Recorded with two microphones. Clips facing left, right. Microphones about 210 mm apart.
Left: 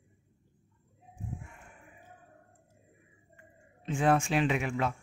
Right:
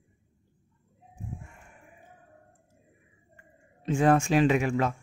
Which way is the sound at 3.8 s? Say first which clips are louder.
Right 4 dB; 40° right (ahead or behind).